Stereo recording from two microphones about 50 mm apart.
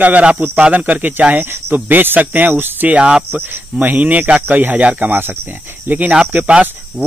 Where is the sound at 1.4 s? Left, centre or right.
Right.